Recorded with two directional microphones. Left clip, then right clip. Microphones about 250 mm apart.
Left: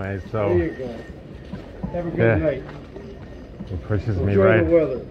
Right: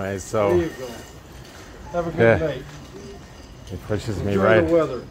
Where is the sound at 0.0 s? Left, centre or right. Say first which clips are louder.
Right 3 dB; right.